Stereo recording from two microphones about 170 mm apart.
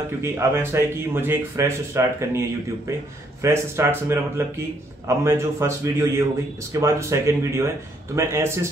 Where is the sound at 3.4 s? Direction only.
15° right (ahead or behind).